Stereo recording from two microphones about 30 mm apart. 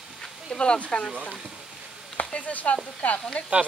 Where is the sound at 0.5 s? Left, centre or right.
Left.